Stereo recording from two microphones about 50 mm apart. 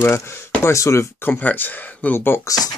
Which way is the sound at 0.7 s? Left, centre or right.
Left.